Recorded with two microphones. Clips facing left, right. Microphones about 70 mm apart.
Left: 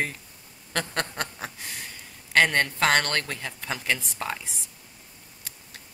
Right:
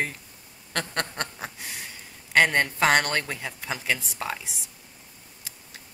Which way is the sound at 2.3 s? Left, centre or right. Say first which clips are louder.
Right 1 dB; centre.